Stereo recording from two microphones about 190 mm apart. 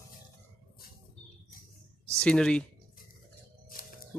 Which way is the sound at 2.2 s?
5° left (ahead or behind).